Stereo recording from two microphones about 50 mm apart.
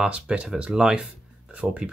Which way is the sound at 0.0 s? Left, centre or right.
Right.